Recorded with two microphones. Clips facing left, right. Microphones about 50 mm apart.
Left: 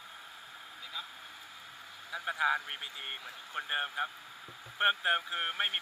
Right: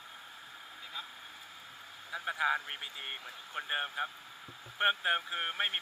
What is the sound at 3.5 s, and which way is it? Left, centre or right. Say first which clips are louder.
Speech: left 1 dB; centre.